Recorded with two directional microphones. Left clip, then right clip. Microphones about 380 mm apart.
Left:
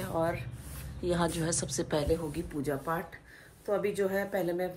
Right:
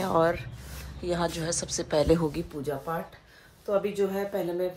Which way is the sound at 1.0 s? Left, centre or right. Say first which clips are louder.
Right 2 dB; centre.